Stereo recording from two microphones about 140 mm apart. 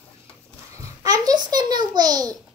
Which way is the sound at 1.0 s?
25° right (ahead or behind).